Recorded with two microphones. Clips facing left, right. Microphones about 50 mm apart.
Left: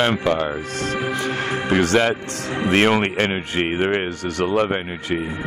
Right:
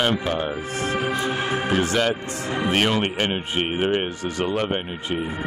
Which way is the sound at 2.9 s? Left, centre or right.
Left.